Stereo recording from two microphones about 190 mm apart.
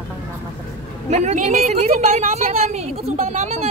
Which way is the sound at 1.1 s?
40° right (ahead or behind).